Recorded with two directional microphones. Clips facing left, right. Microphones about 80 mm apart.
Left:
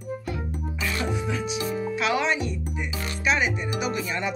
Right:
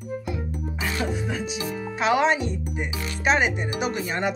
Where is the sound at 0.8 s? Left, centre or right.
Right.